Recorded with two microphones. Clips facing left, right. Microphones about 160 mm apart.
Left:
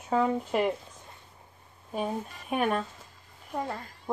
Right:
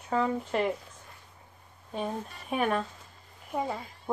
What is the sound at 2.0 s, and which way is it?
Speech, 5° left (ahead or behind).